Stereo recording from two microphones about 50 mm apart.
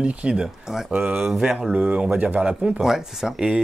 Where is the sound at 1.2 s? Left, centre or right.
Centre.